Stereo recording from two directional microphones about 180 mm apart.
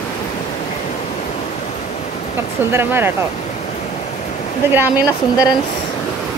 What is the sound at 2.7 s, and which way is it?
Speech, 10° right (ahead or behind).